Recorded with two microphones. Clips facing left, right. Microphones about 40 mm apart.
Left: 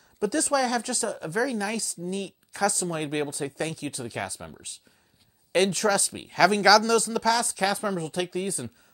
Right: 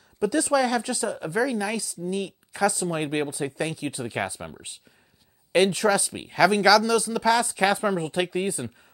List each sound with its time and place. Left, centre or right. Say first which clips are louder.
0.2 s speech: right 2 dB; centre
5.5 s speech: right 2 dB; centre
7.2 s a woman's voice: right 7 dB; centre